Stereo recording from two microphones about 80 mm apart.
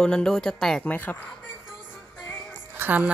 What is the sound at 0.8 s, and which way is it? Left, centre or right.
Speech, centre.